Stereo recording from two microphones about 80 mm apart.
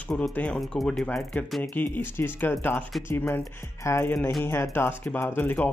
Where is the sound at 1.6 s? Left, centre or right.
Left.